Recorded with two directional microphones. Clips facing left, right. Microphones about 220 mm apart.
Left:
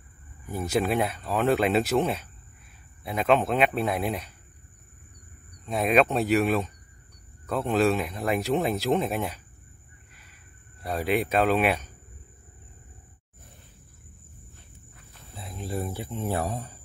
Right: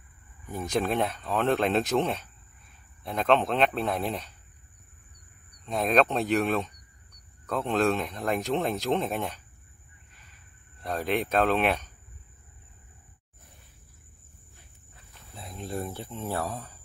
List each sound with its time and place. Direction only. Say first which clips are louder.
0.5 s speech: left 2 dB; 5° left (ahead or behind)
5.7 s speech: left 2 dB; 5° left (ahead or behind)
10.8 s speech: left 2 dB; 10° left (ahead or behind)
15.3 s speech: left 2 dB; centre (ahead or behind)